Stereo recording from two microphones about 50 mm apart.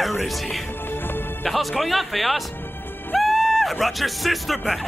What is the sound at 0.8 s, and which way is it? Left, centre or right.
Music, left.